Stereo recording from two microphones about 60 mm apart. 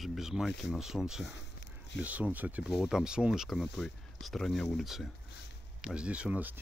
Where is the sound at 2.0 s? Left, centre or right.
Right.